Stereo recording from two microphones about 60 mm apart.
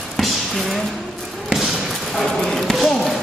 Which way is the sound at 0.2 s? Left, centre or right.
Centre.